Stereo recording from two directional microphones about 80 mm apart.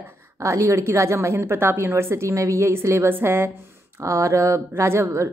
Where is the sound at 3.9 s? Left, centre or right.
Right.